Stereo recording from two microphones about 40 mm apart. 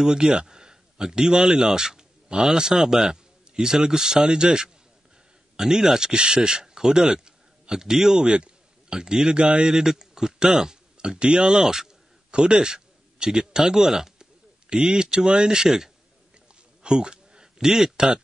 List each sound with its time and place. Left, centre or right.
0.0 s a man's voice: centre
8.3 s a man's voice: right
9.7 s a man's voice: centre